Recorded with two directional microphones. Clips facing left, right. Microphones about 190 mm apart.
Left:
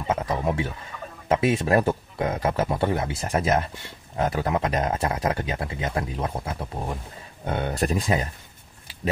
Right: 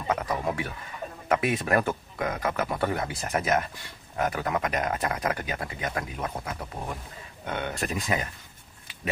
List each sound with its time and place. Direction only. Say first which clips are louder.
0.0 s a man's voice: left 3 dB; 25° left (ahead or behind)